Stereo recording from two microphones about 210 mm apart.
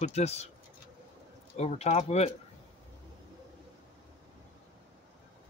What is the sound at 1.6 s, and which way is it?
Speech, 30° left (ahead or behind).